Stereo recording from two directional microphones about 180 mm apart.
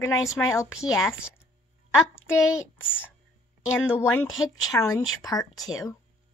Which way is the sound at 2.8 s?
10° left (ahead or behind).